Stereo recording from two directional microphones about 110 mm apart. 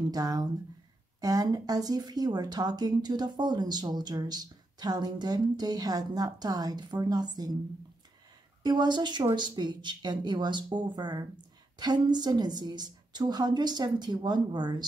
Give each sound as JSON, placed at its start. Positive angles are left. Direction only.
{"t": 0.1, "sound": "speech", "side_deg": -35}
{"t": 8.6, "sound": "speech", "side_deg": -40}